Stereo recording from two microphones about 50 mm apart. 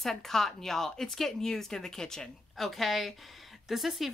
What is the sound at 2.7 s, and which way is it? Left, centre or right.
Speech, centre.